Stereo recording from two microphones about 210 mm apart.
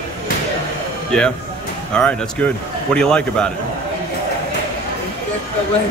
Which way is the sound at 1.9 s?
5° left (ahead or behind).